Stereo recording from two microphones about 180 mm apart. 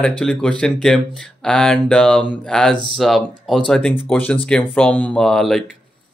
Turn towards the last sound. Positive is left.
turn(degrees=0)  # may be behind; listen again after turning